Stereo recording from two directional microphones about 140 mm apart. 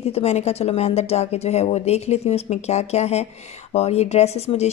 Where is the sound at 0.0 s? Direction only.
45° left (ahead or behind).